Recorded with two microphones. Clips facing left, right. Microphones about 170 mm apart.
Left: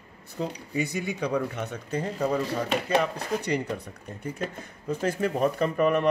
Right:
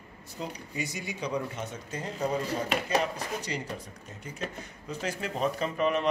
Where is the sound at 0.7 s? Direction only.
55° left (ahead or behind).